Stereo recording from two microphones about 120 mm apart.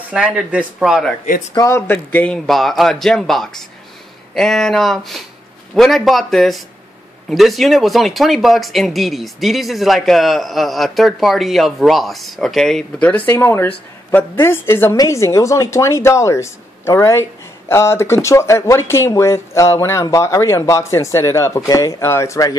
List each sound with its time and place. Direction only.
0.1 s a man's voice: 5° right (ahead or behind)
1.5 s a man's voice: 25° left (ahead or behind)